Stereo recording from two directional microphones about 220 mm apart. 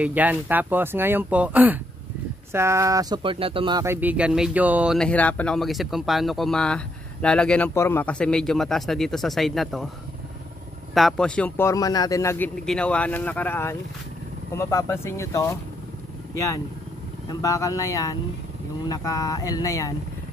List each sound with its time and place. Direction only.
0.0 s speech: 5° right (ahead or behind)
11.0 s speech: centre (ahead or behind)
17.3 s speech: 15° left (ahead or behind)